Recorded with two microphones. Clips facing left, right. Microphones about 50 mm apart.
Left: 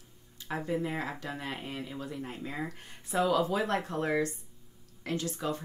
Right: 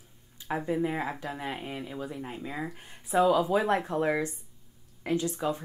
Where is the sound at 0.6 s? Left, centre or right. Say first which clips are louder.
Right 3 dB; centre.